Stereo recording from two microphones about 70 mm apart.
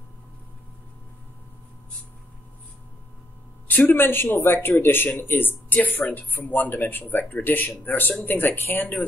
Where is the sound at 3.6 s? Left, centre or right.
Left.